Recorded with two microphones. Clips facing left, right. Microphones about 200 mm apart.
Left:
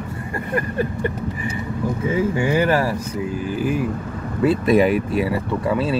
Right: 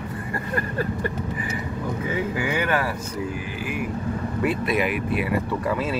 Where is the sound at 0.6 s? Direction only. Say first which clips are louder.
Left 4 dB; 20° left (ahead or behind).